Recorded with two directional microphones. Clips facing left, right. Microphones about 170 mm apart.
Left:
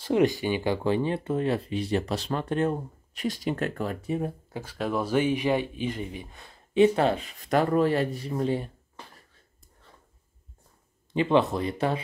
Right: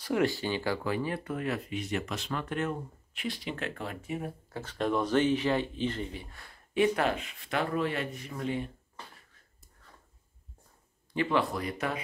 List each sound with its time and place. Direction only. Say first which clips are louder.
0.0 s speech: left 5 dB; 20° left (ahead or behind); by 4.3 s 35° left (ahead or behind)
4.5 s speech: even; 10° left (ahead or behind); by 8.6 s 35° left (ahead or behind)
11.1 s speech: left 6 dB; 25° left (ahead or behind)